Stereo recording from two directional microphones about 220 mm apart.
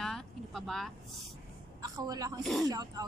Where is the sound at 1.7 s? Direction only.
15° right (ahead or behind).